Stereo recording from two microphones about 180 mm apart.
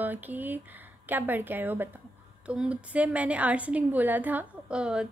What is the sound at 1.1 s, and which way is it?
A woman's voice, 10° right (ahead or behind).